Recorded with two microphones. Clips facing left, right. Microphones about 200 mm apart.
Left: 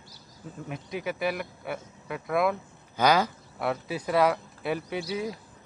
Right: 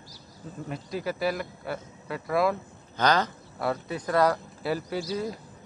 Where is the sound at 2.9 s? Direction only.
10° left (ahead or behind).